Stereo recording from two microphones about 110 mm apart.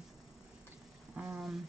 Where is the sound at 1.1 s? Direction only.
10° right (ahead or behind).